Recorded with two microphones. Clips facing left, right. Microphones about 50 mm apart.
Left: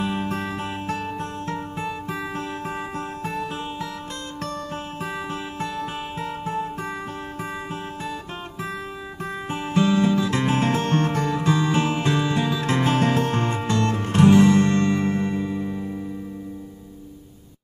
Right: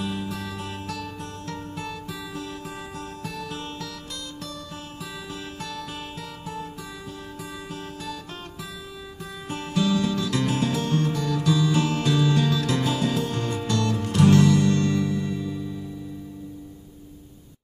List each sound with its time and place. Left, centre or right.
0.0 s music: left
5.0 s music: left
9.5 s music: left